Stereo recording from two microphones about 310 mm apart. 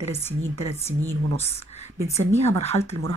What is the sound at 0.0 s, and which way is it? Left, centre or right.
Speech, centre.